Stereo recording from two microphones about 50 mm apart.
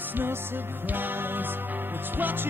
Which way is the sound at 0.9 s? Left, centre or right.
Right.